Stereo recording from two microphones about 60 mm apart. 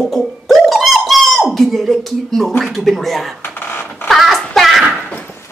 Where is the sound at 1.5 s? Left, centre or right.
Centre.